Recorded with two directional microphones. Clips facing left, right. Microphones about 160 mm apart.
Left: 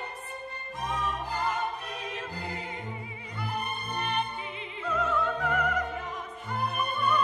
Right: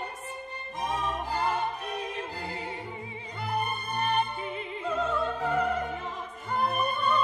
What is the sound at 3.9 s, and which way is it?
Music, 40° right (ahead or behind).